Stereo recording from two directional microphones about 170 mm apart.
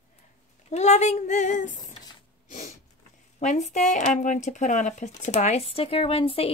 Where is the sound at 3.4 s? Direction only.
45° left (ahead or behind).